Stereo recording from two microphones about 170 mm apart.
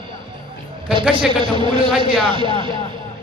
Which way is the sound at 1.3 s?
30° right (ahead or behind).